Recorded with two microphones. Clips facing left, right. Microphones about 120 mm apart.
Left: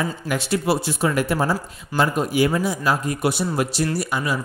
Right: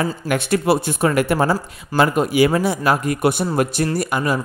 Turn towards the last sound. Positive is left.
turn(degrees=-50)  # may be behind; listen again after turning